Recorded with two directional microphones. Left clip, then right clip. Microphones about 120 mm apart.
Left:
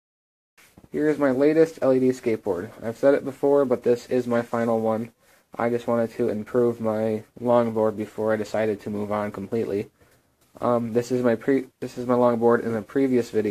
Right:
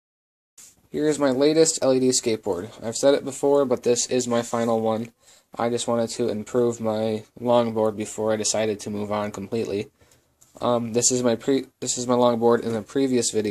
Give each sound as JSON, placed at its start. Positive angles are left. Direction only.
{"t": 0.9, "sound": "speech", "side_deg": -40}
{"t": 2.4, "sound": "speech", "side_deg": -30}
{"t": 6.5, "sound": "speech", "side_deg": -20}
{"t": 6.8, "sound": "speech", "side_deg": -30}